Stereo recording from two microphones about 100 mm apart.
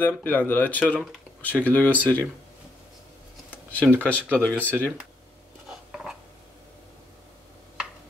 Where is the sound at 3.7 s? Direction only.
15° left (ahead or behind).